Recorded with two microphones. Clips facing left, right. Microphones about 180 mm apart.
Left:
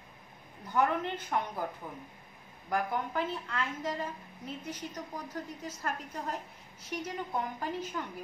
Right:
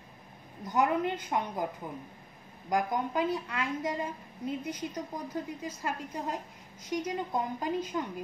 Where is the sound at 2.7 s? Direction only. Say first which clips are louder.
Right 3 dB; 15° right (ahead or behind).